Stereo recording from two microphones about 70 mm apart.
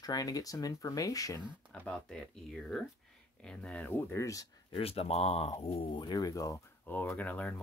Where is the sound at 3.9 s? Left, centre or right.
Left.